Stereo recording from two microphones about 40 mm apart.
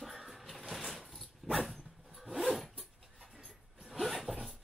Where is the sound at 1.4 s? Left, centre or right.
Centre.